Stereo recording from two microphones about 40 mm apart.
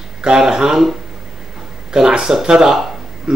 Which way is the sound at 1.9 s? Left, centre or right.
Centre.